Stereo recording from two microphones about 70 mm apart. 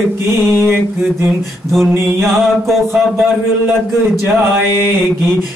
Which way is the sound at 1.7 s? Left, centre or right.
Centre.